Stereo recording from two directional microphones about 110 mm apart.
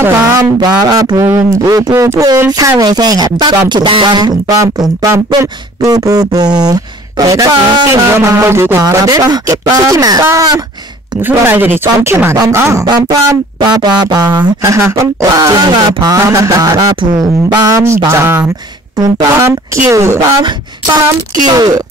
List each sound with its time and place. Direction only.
0.0 s speech: 20° right (ahead or behind)
0.6 s speech: 35° right (ahead or behind)
1.1 s speech: 20° right (ahead or behind)
13.3 s speech: 35° right (ahead or behind)
21.5 s speech: 35° right (ahead or behind)